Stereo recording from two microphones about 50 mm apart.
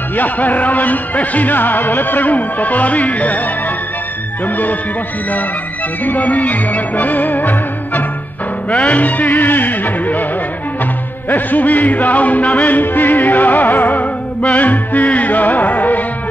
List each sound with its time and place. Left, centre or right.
0.1 s music: left
6.0 s music: left
11.2 s music: left